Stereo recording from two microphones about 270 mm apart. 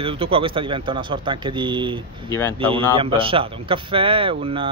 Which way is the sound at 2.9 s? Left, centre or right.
Centre.